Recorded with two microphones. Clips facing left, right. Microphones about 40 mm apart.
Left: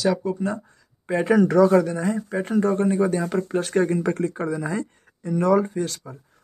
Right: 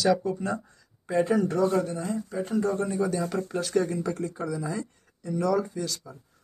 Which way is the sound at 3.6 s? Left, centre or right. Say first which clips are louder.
Left 3 dB; left.